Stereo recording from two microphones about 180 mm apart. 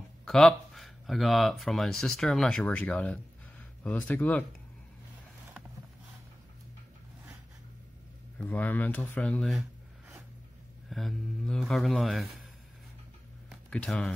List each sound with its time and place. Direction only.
0.2 s speech: 5° left (ahead or behind)
8.4 s speech: 10° left (ahead or behind)
10.9 s speech: centre (ahead or behind)
13.5 s a sound: 5° left (ahead or behind)